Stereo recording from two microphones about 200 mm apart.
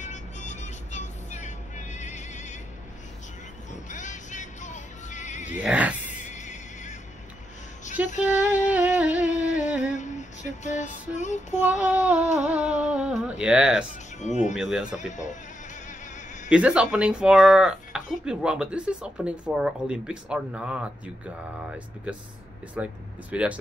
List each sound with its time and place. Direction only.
0.0 s music: 35° left (ahead or behind)
3.9 s music: 40° left (ahead or behind)
5.6 s a sound: 5° right (ahead or behind)
6.0 s music: 35° left (ahead or behind)
8.0 s female singing: 5° right (ahead or behind)
8.7 s a sound: 5° right (ahead or behind)
9.3 s a sound: 35° left (ahead or behind)
9.9 s female singing: 35° left (ahead or behind)
11.7 s a sound: 5° right (ahead or behind)
12.4 s speech: 5° right (ahead or behind)
14.2 s speech: 35° left (ahead or behind)
14.6 s speech: 5° right (ahead or behind)
15.0 s speech: 35° left (ahead or behind)
16.4 s speech: 5° right (ahead or behind)